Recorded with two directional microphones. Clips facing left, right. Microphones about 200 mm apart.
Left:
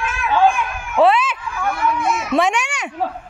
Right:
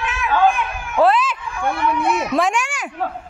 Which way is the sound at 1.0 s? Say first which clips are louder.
Left 1 dB; centre (ahead or behind).